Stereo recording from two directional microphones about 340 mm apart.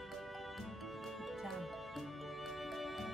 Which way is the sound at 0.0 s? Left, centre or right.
Centre.